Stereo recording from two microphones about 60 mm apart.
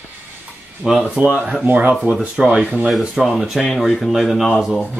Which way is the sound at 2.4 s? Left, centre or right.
Centre.